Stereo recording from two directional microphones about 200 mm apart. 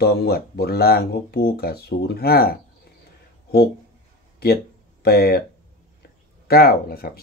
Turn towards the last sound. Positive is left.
turn(degrees=50)  # may be behind; listen again after turning